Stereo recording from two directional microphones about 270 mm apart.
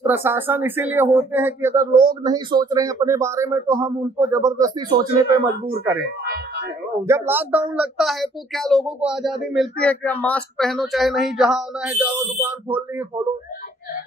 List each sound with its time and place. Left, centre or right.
0.0 s speech: centre
6.0 s speech: right
7.1 s speech: centre